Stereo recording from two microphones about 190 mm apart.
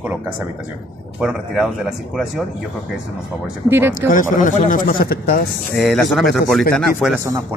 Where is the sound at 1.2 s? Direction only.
5° right (ahead or behind).